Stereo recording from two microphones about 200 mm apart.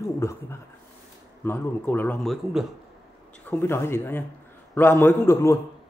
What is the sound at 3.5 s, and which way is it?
A man's voice, 10° left (ahead or behind).